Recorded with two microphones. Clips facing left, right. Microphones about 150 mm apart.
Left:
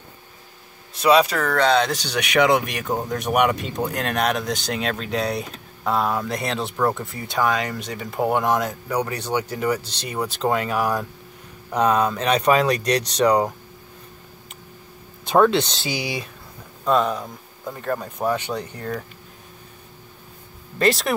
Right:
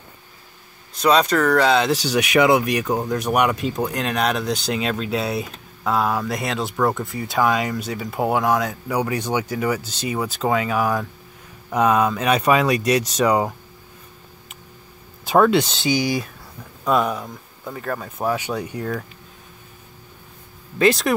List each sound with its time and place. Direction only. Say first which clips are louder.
0.9 s speech: even; 5° left (ahead or behind)
15.2 s speech: right 1 dB; 5° right (ahead or behind)
20.8 s speech: right 3 dB; centre (ahead or behind)